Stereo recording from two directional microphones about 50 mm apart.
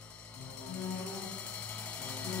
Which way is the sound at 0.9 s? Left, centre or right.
Left.